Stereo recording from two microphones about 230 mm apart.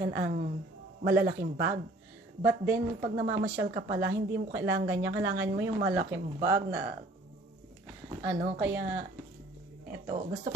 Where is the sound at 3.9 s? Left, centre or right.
Right.